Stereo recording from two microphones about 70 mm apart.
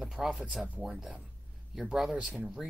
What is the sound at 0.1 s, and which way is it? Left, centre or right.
Speech, centre.